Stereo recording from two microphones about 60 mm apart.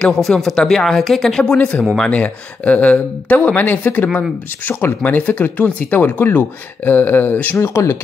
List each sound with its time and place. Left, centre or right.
0.0 s speech: centre; by 7.5 s left
7.5 s speech: left